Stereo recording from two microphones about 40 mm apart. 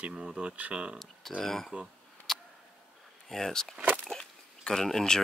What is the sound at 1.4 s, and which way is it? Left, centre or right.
Speech, centre.